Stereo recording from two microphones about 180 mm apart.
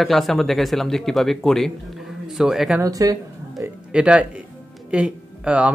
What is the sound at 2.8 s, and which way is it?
Speech, 20° right (ahead or behind).